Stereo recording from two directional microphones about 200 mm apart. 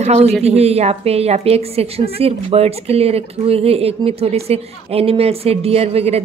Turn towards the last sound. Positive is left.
turn(degrees=-30)  # may be behind; listen again after turning